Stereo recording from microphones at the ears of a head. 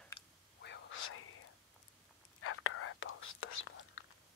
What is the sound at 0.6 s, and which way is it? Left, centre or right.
Whispering, left.